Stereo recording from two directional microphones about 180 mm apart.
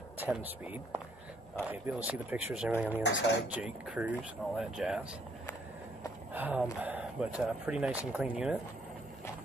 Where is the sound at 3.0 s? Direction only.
70° left (ahead or behind).